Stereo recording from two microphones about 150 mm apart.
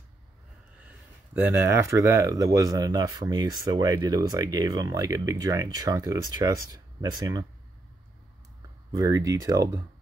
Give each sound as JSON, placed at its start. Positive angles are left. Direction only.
{"t": 1.3, "sound": "speech", "side_deg": -15}
{"t": 8.9, "sound": "speech", "side_deg": -20}